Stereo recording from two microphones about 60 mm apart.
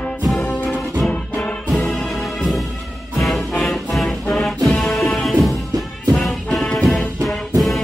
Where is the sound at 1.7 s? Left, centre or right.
Centre.